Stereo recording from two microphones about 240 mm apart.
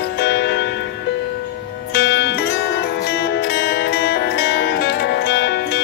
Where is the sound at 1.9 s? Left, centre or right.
Left.